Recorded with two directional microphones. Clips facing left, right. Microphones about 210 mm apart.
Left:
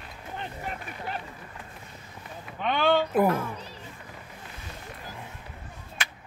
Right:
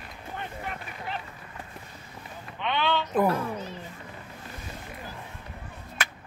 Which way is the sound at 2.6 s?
45° left (ahead or behind).